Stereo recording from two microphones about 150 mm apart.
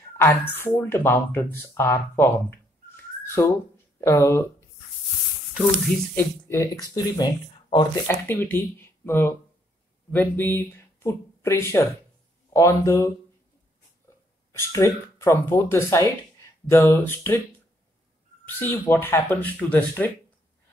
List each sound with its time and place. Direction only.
0.2 s speech: 15° left (ahead or behind)
5.5 s speech: centre (ahead or behind)
6.1 s speech: 20° left (ahead or behind)
8.1 s speech: 15° left (ahead or behind)
14.0 s a sound: 20° left (ahead or behind)
15.7 s speech: 20° left (ahead or behind)
18.5 s speech: 15° left (ahead or behind)